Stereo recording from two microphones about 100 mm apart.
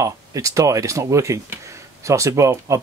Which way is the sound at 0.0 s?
35° right (ahead or behind).